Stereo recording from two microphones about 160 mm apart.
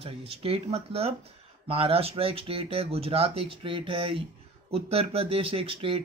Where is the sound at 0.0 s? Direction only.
40° right (ahead or behind).